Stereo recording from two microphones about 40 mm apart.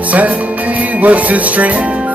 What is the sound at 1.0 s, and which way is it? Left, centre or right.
Music, right.